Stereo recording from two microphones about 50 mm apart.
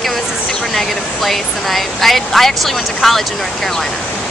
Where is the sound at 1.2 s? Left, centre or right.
Centre.